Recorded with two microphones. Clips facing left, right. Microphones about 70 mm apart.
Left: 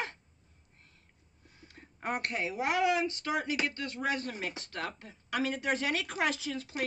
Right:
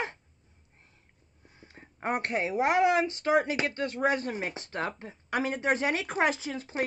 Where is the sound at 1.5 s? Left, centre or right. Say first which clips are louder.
Right 3 dB; right.